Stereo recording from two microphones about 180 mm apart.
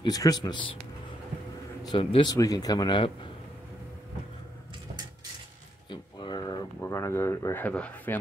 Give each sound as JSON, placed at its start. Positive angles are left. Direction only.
{"t": 0.0, "sound": "speech", "side_deg": 20}
{"t": 1.9, "sound": "speech", "side_deg": 25}
{"t": 5.9, "sound": "a sound", "side_deg": 25}
{"t": 6.8, "sound": "speech", "side_deg": 15}